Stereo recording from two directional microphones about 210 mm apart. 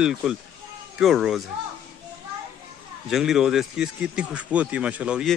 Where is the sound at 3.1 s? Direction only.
Centre (ahead or behind).